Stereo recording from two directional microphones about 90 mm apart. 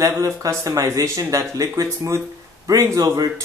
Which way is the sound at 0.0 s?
35° right (ahead or behind).